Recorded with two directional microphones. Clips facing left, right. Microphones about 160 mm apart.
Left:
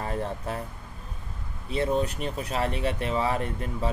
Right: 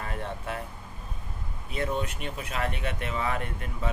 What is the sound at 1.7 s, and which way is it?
Speech, 35° left (ahead or behind).